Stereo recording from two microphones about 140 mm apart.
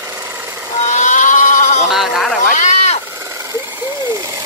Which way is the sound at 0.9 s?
70° left (ahead or behind).